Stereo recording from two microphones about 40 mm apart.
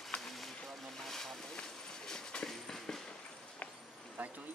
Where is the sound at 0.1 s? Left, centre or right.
Left.